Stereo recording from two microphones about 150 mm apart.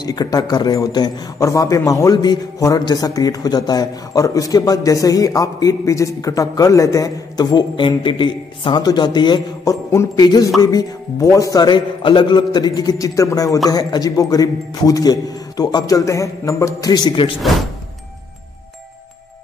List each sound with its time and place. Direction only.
0.0 s a man's voice: 25° left (ahead or behind)